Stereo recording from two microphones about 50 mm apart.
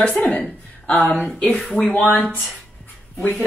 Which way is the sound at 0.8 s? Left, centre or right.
Left.